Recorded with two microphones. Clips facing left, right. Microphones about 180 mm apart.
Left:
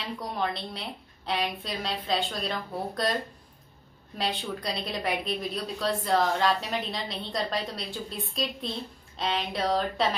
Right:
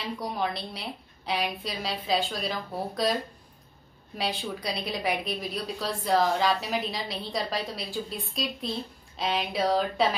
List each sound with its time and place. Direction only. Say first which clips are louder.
0.0 s a woman's voice: right 1 dB; centre (ahead or behind)
4.2 s a woman's voice: even; centre (ahead or behind)